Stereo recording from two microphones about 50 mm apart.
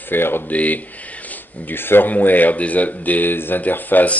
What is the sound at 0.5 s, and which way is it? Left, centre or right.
Speech, left.